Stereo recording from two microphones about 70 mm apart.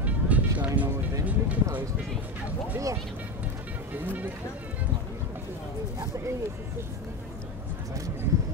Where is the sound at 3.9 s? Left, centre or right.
Right.